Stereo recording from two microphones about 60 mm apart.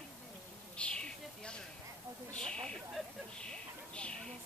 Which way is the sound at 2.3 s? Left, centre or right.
Centre.